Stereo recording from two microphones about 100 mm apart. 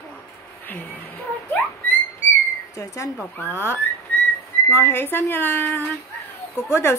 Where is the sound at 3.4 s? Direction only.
25° left (ahead or behind).